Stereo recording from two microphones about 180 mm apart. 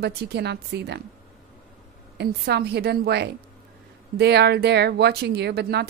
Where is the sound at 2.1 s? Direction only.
65° right (ahead or behind).